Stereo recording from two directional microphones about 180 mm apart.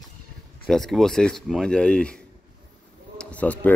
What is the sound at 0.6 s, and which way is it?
A man's voice, centre (ahead or behind).